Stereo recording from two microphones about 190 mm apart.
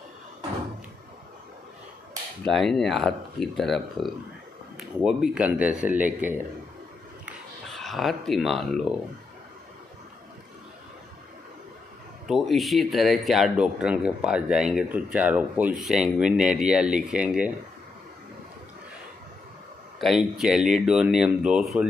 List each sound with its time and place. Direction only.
2.4 s speech: centre (ahead or behind)
7.8 s speech: centre (ahead or behind)
12.3 s speech: centre (ahead or behind)
20.0 s speech: centre (ahead or behind)